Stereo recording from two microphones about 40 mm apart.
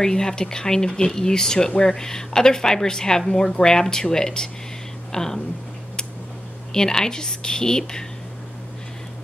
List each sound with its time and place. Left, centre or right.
0.0 s a woman's voice: centre
6.7 s a woman's voice: centre